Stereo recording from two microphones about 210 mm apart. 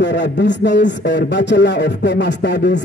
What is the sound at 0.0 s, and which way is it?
A man's voice, 55° left (ahead or behind).